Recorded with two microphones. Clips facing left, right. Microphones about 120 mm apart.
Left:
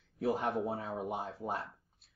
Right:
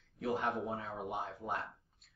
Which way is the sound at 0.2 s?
30° left (ahead or behind).